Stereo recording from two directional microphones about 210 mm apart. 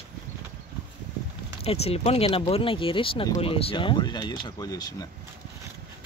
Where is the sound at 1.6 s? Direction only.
30° left (ahead or behind).